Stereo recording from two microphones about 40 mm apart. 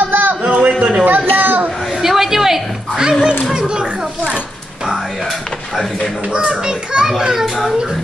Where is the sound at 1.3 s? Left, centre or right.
Right.